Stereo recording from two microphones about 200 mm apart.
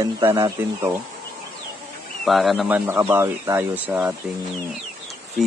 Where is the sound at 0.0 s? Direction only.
15° right (ahead or behind).